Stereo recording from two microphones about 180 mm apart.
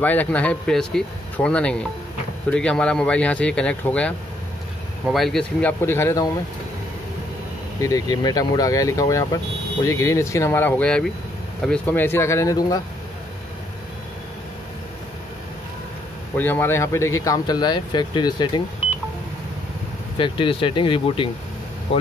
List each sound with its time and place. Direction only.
0.0 s speech: 10° left (ahead or behind)
7.8 s speech: 20° left (ahead or behind)
16.3 s speech: 10° left (ahead or behind)
20.2 s speech: 30° left (ahead or behind)